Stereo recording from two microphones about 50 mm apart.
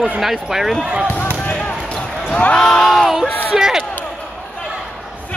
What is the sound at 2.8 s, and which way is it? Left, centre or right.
Speech, centre.